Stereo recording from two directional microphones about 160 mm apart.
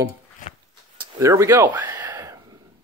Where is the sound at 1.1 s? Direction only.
20° right (ahead or behind).